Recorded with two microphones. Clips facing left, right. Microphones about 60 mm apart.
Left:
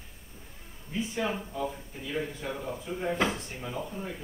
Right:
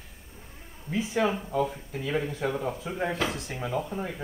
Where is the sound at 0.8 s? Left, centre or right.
Right.